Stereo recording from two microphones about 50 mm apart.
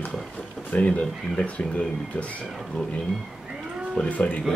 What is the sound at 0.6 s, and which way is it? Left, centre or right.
Speech, left.